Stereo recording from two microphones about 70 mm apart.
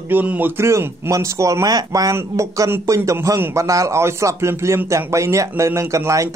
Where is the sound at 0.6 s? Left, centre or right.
Right.